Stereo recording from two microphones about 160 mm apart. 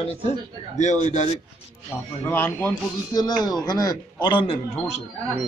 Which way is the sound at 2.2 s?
15° left (ahead or behind).